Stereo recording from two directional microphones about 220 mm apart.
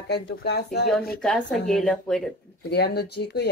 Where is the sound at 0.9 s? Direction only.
5° left (ahead or behind).